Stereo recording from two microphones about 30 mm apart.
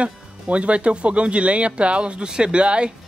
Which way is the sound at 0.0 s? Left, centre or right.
Right.